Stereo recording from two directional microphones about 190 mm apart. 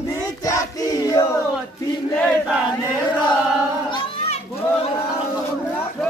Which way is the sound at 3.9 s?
35° left (ahead or behind).